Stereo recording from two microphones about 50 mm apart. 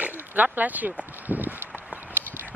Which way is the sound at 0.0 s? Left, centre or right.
Right.